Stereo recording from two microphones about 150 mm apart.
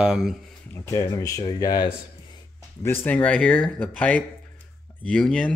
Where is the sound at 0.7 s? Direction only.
20° left (ahead or behind).